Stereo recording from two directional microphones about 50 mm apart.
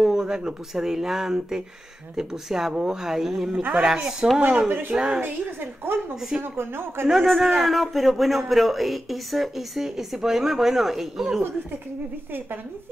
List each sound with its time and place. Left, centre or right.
0.0 s speech: centre
4.6 s speech: right
4.9 s speech: centre
5.2 s a sound: right
6.4 s speech: right
7.1 s a man's voice: centre